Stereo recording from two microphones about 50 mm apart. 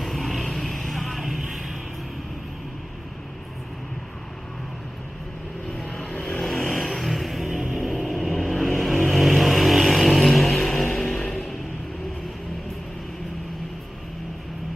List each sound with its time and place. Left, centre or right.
0.0 s vehicle: centre
6.1 s vehicle: left
6.4 s music: centre